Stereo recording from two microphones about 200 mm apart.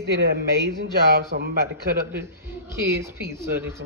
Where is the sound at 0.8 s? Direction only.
50° right (ahead or behind).